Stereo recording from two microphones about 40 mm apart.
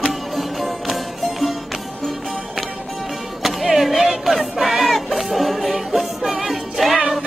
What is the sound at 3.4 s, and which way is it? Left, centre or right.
Music, centre.